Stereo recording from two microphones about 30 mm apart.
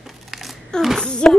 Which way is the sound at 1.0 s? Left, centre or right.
Left.